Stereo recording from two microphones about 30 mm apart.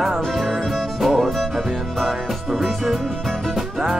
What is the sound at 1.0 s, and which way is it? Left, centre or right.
Music, centre.